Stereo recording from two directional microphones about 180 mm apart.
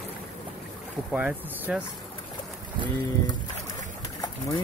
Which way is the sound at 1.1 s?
5° right (ahead or behind).